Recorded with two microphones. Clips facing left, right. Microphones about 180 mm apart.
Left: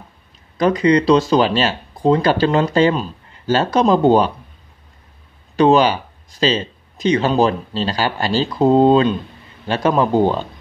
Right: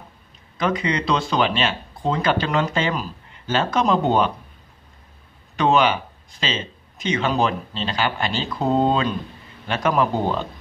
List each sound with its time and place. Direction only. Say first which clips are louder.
0.6 s speech: left 8 dB; 35° left (ahead or behind)
5.6 s speech: left 5 dB; 35° left (ahead or behind)